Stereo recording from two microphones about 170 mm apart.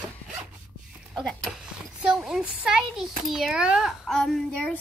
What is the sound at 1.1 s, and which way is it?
A woman's voice, centre (ahead or behind).